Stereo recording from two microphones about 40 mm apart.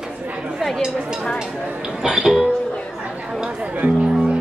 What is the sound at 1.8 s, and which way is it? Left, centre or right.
Music, centre.